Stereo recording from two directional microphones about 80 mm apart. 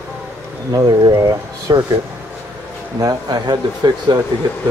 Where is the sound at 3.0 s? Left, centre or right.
Right.